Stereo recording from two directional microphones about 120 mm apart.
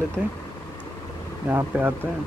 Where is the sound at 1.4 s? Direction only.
15° right (ahead or behind).